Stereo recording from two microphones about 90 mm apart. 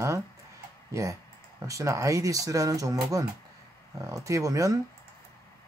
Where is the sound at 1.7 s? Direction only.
35° right (ahead or behind).